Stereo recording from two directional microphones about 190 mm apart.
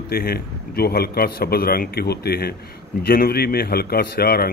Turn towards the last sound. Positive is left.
turn(degrees=55)  # may be behind; listen again after turning